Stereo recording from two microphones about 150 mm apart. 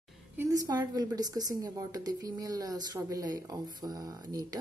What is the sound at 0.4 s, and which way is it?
Speech, 25° right (ahead or behind).